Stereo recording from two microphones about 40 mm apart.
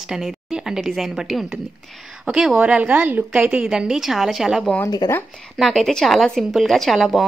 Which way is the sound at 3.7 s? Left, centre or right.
Centre.